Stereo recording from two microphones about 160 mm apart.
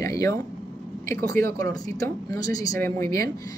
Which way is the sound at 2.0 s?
25° left (ahead or behind).